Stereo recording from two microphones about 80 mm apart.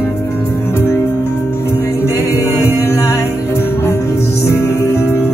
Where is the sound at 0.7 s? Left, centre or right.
Left.